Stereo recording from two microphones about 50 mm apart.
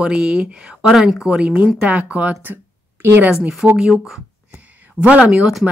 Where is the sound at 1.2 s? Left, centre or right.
Right.